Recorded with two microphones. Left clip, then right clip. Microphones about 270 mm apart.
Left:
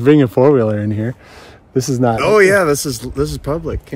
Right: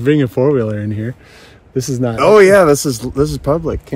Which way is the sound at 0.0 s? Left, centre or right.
Left.